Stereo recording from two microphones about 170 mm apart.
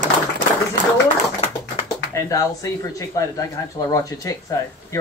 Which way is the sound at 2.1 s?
20° left (ahead or behind).